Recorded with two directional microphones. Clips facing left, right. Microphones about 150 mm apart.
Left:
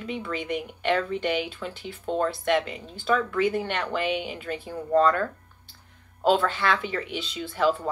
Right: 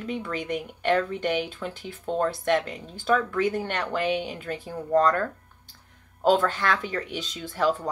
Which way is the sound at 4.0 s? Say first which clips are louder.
Right 3 dB; 45° right (ahead or behind).